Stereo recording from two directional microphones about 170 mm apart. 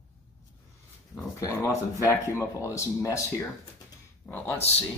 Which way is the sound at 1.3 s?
15° left (ahead or behind).